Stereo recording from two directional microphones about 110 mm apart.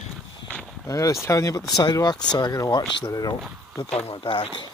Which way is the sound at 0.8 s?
30° left (ahead or behind).